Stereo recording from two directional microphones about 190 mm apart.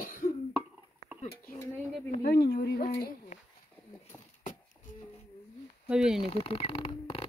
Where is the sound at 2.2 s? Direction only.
60° left (ahead or behind).